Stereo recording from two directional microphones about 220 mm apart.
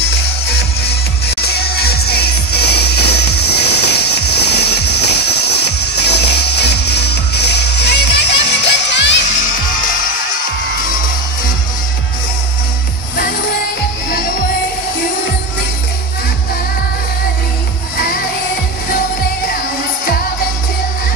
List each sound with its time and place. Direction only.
0.5 s music: 45° left (ahead or behind)
17.9 s music: 45° left (ahead or behind)